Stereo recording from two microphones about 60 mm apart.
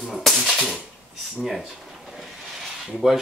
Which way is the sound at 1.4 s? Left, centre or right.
Centre.